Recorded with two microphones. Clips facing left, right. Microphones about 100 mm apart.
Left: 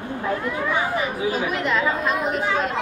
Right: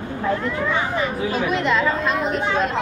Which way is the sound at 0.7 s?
10° left (ahead or behind).